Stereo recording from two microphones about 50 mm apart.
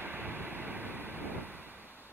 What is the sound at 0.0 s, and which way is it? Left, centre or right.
Vehicle, right.